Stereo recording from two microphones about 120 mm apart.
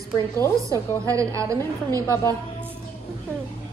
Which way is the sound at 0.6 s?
25° right (ahead or behind).